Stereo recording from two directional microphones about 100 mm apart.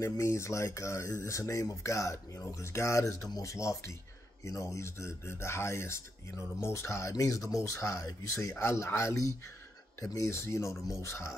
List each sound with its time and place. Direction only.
0.0 s speech: 30° left (ahead or behind)